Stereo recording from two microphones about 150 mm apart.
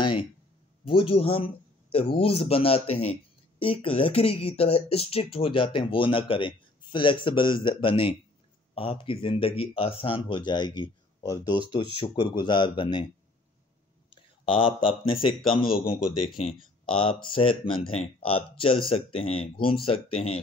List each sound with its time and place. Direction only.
0.0 s a sound: 35° left (ahead or behind)
0.8 s speech: 35° left (ahead or behind)
14.1 s speech: 35° left (ahead or behind)